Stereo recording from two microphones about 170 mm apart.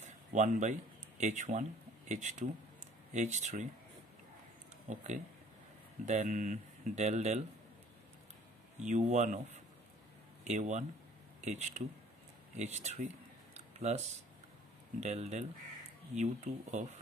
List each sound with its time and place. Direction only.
0.0 s speech: 45° right (ahead or behind)
4.8 s speech: 45° right (ahead or behind)
8.7 s speech: 40° right (ahead or behind)